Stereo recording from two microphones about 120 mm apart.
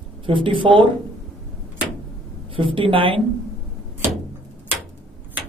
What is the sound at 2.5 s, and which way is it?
Speech, 45° right (ahead or behind).